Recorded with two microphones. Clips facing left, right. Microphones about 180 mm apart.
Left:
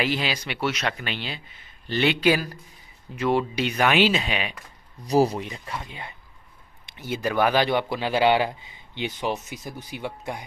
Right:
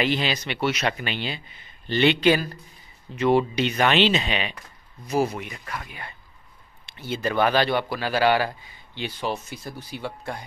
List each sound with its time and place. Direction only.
0.0 s speech: 10° left (ahead or behind)
5.0 s speech: 35° left (ahead or behind); by 10.4 s 15° left (ahead or behind)